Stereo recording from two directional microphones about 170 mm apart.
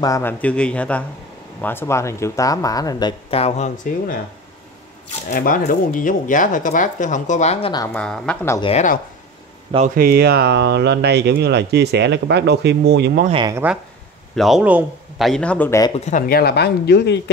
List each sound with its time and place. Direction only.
0.0 s a man's voice: 15° left (ahead or behind); by 4.2 s 50° left (ahead or behind)
5.3 s speech: 55° left (ahead or behind)
7.9 s speech: 5° left (ahead or behind)
9.9 s speech: 65° right (ahead or behind); by 13.2 s 85° right
13.3 s speech: 30° right (ahead or behind)
14.3 s speech: centre (ahead or behind)
15.9 s speech: 50° left (ahead or behind); by 17.2 s 80° left